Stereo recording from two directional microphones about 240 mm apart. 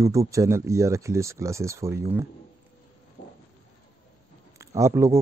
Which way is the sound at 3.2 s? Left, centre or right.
Left.